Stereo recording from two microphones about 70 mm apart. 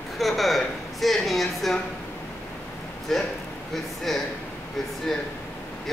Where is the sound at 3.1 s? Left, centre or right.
Centre.